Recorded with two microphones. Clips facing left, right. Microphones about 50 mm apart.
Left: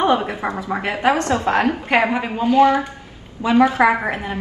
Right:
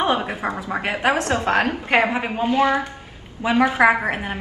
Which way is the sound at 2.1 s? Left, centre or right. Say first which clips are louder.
Left 4 dB; right.